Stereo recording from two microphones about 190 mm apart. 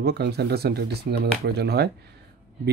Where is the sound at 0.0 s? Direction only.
55° right (ahead or behind).